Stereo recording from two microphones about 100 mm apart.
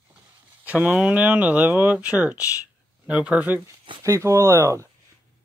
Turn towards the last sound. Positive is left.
turn(degrees=-30)  # may be behind; listen again after turning